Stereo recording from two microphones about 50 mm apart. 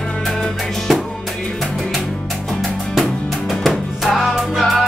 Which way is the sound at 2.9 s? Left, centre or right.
Centre.